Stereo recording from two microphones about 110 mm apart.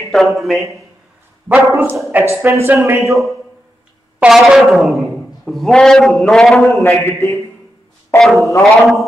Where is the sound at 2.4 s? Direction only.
25° right (ahead or behind).